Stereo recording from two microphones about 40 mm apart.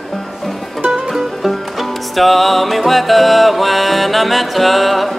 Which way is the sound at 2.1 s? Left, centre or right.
Centre.